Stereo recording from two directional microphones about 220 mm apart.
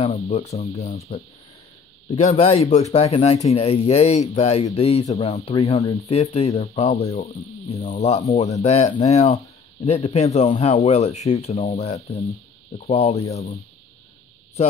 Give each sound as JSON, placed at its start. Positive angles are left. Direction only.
{"t": 0.0, "sound": "speech", "side_deg": 30}